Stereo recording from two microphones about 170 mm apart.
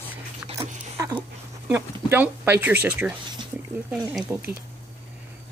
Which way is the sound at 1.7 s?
10° right (ahead or behind).